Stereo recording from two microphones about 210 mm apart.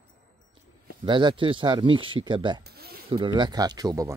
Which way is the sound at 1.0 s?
20° right (ahead or behind).